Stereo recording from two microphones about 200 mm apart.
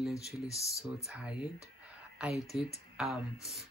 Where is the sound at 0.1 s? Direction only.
15° left (ahead or behind).